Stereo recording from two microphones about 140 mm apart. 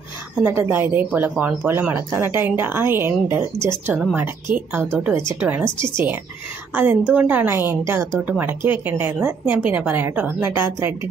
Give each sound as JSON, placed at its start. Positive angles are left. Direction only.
{"t": 0.4, "sound": "a woman's voice", "side_deg": -15}